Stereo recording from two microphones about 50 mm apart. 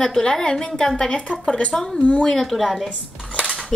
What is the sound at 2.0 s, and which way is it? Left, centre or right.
Speech, left.